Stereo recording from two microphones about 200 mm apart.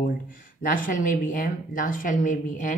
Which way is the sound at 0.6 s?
40° left (ahead or behind).